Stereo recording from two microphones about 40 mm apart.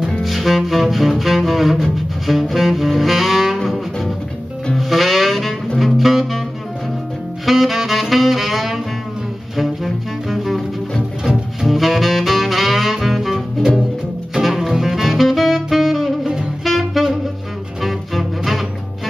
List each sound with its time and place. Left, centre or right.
0.2 s music: centre
2.5 s saxophone: centre
3.5 s music: centre
7.4 s saxophone: centre
11.6 s music: centre
14.4 s music: centre
16.6 s saxophone: centre
17.7 s music: centre